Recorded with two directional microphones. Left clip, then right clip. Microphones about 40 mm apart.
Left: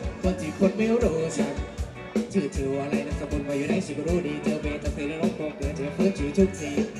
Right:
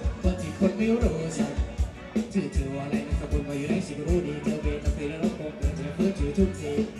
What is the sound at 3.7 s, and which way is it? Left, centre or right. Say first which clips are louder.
Music: left 2 dB; left.